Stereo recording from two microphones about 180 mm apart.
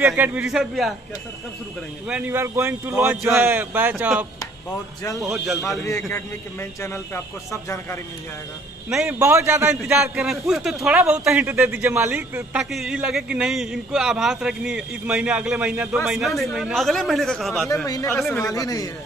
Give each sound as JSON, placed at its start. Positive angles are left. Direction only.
{"t": 0.0, "sound": "speech", "side_deg": -10}
{"t": 2.0, "sound": "a man's voice", "side_deg": -10}
{"t": 5.3, "sound": "speech", "side_deg": 0}
{"t": 5.9, "sound": "speech", "side_deg": 15}
{"t": 8.8, "sound": "a man's voice", "side_deg": -5}
{"t": 9.2, "sound": "a man's voice", "side_deg": -15}
{"t": 10.1, "sound": "speech", "side_deg": 0}
{"t": 17.8, "sound": "speech", "side_deg": 15}